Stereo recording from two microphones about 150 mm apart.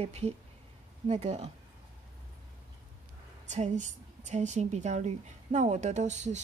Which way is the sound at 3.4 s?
50° right (ahead or behind).